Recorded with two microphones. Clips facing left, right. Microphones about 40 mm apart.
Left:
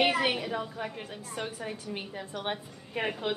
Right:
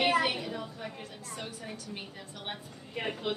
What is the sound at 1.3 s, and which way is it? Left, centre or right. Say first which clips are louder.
A woman's voice: left 6 dB; left.